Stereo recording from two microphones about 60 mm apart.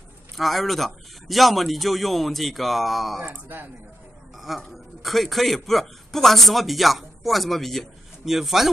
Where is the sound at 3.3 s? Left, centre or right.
Right.